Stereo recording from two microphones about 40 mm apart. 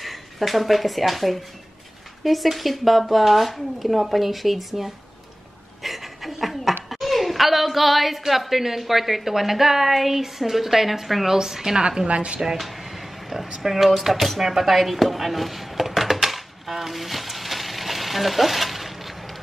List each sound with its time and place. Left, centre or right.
0.0 s speech: centre
5.8 s pant: centre
6.9 s a sound: centre
8.3 s a woman's voice: centre
12.1 s speech: right
12.5 s air conditioning: centre
13.6 s a sound: centre